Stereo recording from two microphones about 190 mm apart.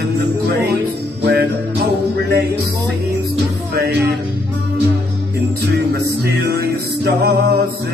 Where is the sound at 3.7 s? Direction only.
55° right (ahead or behind).